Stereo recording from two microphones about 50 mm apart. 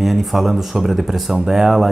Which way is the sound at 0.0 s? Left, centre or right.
Centre.